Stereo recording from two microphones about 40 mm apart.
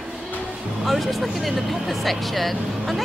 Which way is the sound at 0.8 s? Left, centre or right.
Centre.